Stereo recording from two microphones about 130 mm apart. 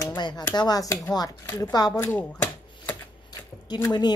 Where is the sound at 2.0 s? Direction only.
15° left (ahead or behind).